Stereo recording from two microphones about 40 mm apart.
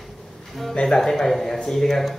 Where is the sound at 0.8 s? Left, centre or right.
Centre.